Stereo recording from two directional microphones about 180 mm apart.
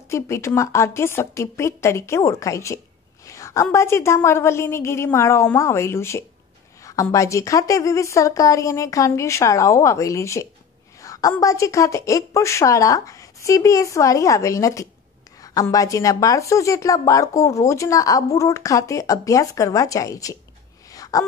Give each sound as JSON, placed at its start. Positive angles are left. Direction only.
{"t": 0.1, "sound": "a woman's voice", "side_deg": 15}
{"t": 3.3, "sound": "a sound", "side_deg": 15}
{"t": 3.7, "sound": "a woman's voice", "side_deg": 15}
{"t": 20.9, "sound": "gasp", "side_deg": 20}